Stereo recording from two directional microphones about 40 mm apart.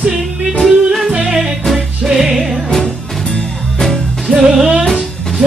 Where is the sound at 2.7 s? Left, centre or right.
Centre.